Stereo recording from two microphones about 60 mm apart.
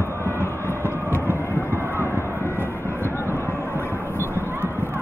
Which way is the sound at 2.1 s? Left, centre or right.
Left.